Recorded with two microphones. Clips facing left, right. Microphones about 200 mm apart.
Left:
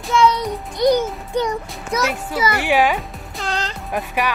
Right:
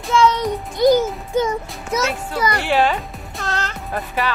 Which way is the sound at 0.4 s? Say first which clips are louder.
Right 2 dB; centre (ahead or behind).